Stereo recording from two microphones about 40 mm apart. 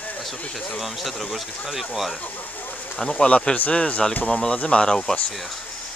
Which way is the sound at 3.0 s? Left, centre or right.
Left.